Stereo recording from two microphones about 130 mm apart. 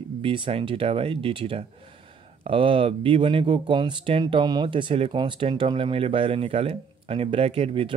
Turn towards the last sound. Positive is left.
turn(degrees=-45)  # may be behind; listen again after turning